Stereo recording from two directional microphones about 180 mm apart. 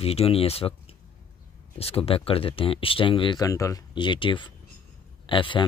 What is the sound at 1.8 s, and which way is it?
Speech, 35° left (ahead or behind).